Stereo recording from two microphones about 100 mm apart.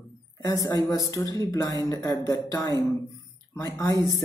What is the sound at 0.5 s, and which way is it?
Speech, 40° left (ahead or behind).